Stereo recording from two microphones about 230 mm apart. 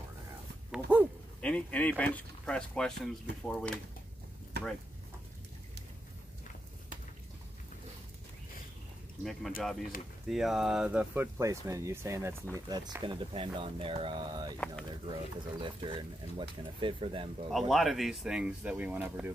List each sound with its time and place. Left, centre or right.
0.7 s a sound: centre
1.4 s speech: centre
4.6 s a sound: right
9.2 s speech: centre
15.6 s speech: right
17.5 s speech: centre